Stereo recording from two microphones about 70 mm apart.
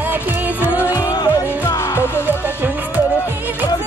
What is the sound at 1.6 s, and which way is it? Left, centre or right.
Music, left.